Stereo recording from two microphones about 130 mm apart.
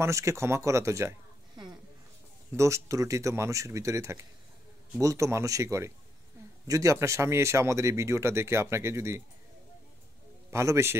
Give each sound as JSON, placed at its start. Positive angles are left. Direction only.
{"t": 0.0, "sound": "speech", "side_deg": -20}
{"t": 2.5, "sound": "speech", "side_deg": -25}
{"t": 10.5, "sound": "speech", "side_deg": -20}